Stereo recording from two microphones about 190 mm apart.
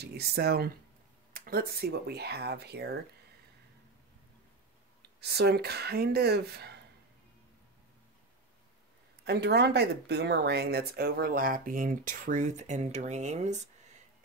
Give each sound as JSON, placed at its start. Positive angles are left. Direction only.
{"t": 0.0, "sound": "speech", "side_deg": -55}
{"t": 5.0, "sound": "speech", "side_deg": -60}
{"t": 9.2, "sound": "speech", "side_deg": -60}